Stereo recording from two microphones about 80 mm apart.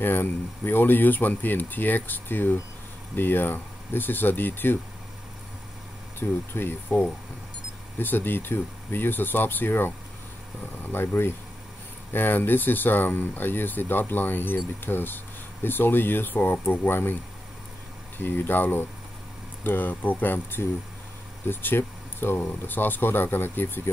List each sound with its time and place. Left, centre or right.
0.0 s speech: left
6.1 s speech: left